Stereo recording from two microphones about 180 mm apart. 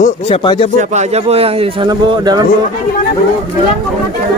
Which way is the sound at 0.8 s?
40° right (ahead or behind).